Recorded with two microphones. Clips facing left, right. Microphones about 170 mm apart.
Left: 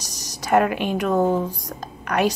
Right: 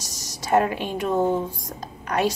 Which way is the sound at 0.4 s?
25° right (ahead or behind).